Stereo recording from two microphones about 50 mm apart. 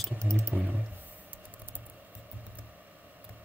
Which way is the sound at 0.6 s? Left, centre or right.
Right.